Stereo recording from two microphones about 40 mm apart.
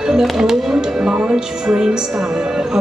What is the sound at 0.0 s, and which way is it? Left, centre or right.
Music, centre.